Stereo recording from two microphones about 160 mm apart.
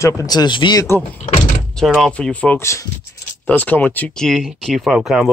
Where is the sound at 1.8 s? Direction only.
5° left (ahead or behind).